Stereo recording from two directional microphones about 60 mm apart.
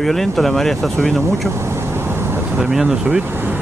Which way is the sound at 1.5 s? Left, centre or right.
Right.